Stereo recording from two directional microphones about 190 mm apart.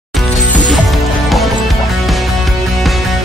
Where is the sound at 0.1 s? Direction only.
5° left (ahead or behind).